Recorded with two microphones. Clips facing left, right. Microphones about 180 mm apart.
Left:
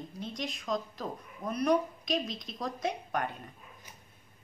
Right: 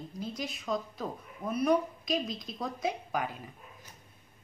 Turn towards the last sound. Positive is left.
turn(degrees=-5)  # may be behind; listen again after turning